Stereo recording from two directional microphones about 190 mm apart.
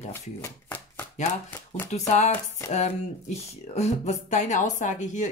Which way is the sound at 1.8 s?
35° left (ahead or behind).